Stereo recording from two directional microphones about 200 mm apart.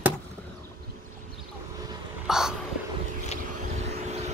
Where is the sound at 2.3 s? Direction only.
5° right (ahead or behind).